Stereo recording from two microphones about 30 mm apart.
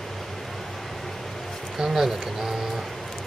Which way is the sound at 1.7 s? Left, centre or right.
Right.